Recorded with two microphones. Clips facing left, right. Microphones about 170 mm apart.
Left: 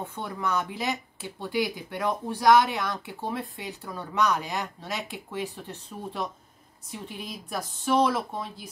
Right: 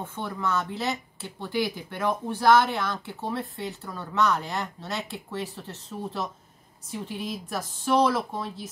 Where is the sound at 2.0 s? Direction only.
10° left (ahead or behind).